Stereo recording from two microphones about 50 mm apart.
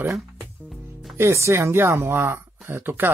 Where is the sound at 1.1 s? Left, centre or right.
Right.